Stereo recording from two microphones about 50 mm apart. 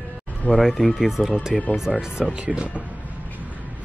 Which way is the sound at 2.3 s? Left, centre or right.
Right.